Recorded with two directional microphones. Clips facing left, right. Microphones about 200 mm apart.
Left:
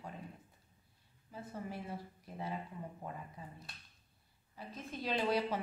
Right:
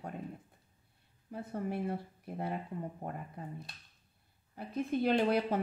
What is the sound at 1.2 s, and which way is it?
Speech, 55° right (ahead or behind).